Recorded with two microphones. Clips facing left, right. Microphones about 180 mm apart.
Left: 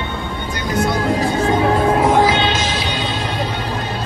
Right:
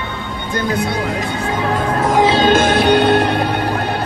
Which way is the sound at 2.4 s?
50° right (ahead or behind).